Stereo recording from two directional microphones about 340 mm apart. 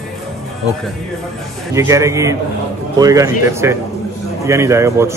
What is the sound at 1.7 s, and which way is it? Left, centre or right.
A man's voice, centre.